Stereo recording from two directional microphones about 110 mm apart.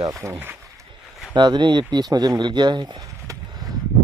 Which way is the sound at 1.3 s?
45° right (ahead or behind).